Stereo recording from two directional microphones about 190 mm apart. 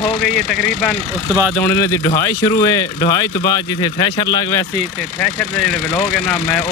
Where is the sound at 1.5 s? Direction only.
15° left (ahead or behind).